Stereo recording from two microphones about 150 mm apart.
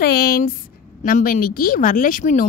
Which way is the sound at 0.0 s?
90° left.